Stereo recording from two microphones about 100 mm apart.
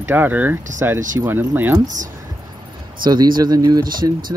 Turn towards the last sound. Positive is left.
turn(degrees=-40)  # may be behind; listen again after turning